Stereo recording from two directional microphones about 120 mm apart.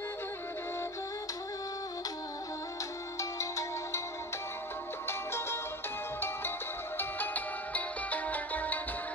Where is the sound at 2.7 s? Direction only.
25° left (ahead or behind).